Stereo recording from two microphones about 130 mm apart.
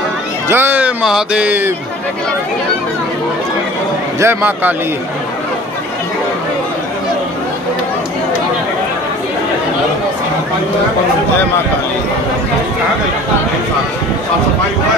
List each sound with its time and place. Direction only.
0.5 s speech: 15° right (ahead or behind)
4.2 s speech: 20° right (ahead or behind)